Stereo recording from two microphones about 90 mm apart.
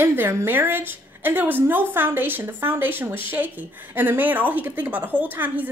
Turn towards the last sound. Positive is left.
turn(degrees=-20)  # may be behind; listen again after turning